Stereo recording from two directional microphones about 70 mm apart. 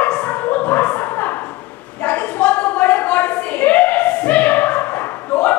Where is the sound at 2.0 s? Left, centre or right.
Centre.